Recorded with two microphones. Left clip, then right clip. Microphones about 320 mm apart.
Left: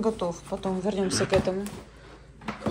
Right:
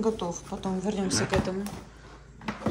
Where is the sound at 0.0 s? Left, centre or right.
Centre.